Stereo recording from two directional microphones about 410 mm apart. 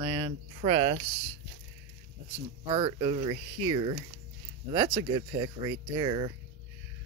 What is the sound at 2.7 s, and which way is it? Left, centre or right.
Speech, centre.